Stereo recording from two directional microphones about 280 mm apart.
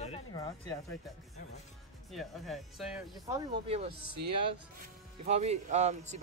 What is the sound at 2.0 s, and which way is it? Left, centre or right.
Speech, centre.